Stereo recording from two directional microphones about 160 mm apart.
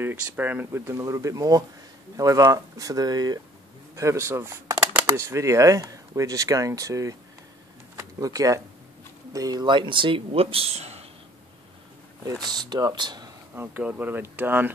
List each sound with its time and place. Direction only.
0.0 s speech: 10° right (ahead or behind); by 11.1 s 40° right (ahead or behind)
12.3 s speech: 25° right (ahead or behind)
13.6 s speech: 10° right (ahead or behind)